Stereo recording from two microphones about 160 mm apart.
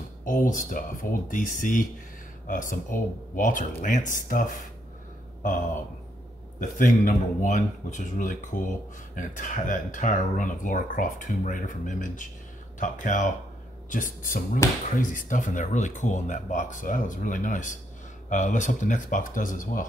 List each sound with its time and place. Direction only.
0.2 s speech: 60° left (ahead or behind)
6.6 s speech: 55° left (ahead or behind)